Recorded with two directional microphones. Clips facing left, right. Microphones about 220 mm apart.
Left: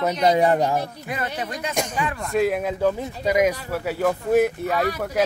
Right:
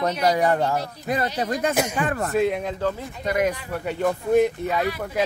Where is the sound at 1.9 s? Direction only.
50° right (ahead or behind).